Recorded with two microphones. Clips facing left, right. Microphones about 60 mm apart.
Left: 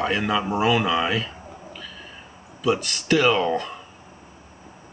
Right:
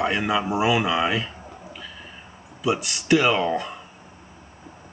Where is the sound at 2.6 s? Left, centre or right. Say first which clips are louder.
Even; centre.